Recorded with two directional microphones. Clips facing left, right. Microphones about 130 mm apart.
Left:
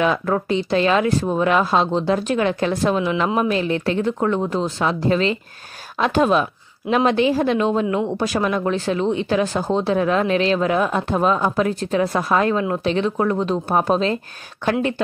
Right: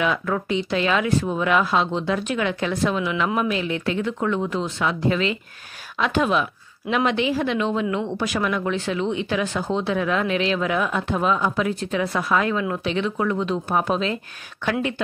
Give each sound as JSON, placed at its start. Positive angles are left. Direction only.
{"t": 0.0, "sound": "speech", "side_deg": 35}